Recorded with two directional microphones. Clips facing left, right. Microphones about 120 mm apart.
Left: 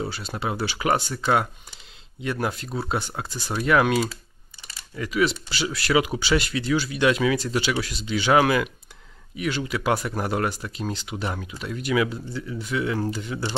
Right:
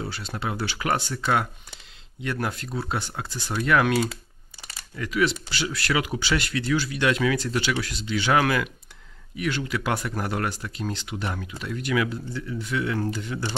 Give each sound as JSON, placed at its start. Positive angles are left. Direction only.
{"t": 0.0, "sound": "speech", "side_deg": 10}
{"t": 2.2, "sound": "speech", "side_deg": 15}